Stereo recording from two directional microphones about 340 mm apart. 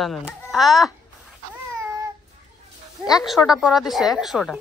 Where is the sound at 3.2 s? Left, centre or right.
Centre.